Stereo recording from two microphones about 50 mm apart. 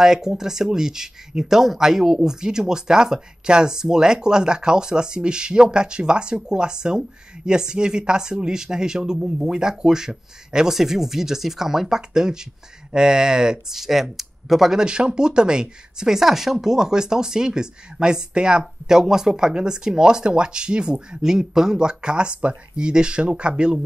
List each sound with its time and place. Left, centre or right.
0.0 s speech: centre